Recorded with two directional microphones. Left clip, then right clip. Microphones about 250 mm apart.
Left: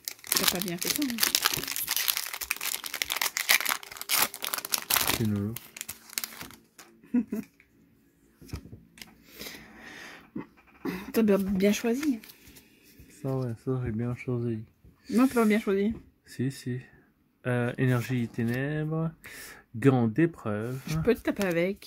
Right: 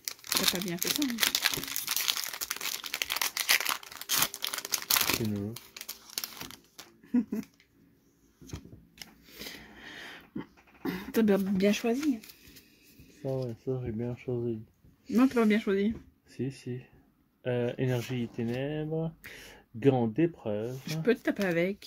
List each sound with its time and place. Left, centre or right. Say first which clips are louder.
0.1 s speech: left 1 dB; centre
2.0 s crumpling: right 1 dB; centre
6.1 s crumpling: left 2 dB; centre
7.1 s a sound: left 1 dB; centre
9.3 s a sound: left 1 dB; centre
13.2 s speech: left 1 dB; left
15.1 s speech: left 2 dB; centre
16.3 s speech: left 3 dB; left
20.8 s speech: left 2 dB; centre